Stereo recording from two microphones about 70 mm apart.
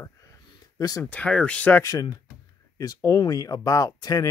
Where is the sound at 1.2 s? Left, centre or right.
Centre.